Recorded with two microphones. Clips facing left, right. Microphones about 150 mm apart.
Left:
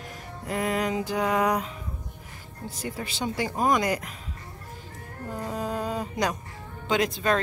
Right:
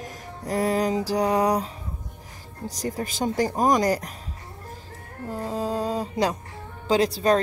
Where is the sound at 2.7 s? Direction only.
40° right (ahead or behind).